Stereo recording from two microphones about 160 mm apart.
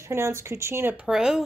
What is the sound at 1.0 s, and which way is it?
Speech, 5° right (ahead or behind).